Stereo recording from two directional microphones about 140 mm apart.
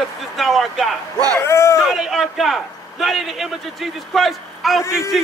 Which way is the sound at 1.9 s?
5° right (ahead or behind).